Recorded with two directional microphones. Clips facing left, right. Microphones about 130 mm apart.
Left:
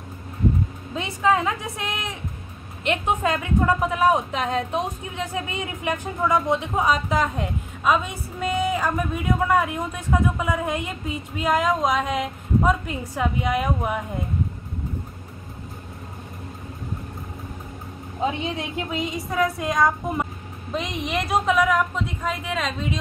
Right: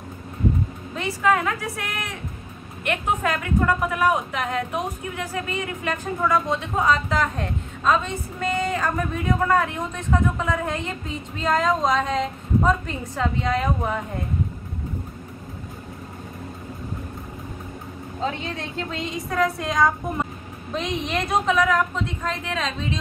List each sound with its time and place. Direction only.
0.9 s a woman's voice: 20° left (ahead or behind); by 12.9 s 5° left (ahead or behind)
13.1 s speech: 15° left (ahead or behind)
18.2 s a woman's voice: 15° left (ahead or behind)